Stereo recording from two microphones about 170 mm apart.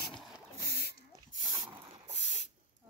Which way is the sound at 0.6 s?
70° left (ahead or behind).